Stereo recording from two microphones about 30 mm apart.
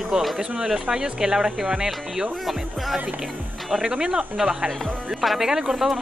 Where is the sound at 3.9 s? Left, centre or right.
Right.